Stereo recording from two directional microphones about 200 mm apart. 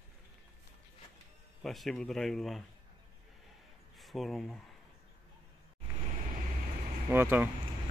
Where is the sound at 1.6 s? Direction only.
Centre (ahead or behind).